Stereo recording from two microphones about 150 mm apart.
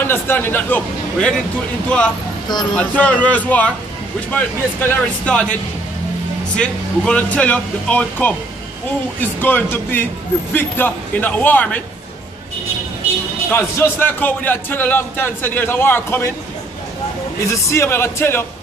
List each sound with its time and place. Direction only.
0.0 s a man's voice: 15° left (ahead or behind)
2.7 s a man's voice: 10° left (ahead or behind)
13.5 s a man's voice: 15° left (ahead or behind)
17.5 s a man's voice: 20° left (ahead or behind)